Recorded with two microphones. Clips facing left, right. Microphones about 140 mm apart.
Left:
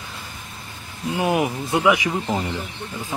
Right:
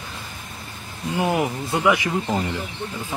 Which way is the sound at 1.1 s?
15° left (ahead or behind).